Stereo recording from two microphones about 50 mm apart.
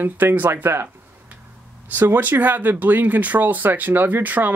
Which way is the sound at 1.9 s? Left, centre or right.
Right.